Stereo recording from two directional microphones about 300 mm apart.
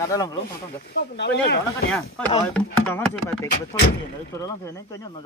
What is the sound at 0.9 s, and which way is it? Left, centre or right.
Speech, left.